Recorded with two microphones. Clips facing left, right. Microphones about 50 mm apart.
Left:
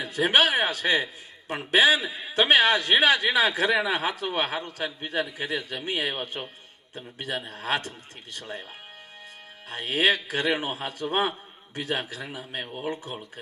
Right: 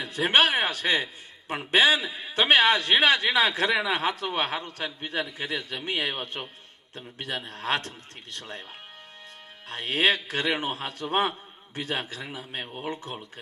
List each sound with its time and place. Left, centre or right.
0.0 s a man's voice: centre
9.7 s a man's voice: centre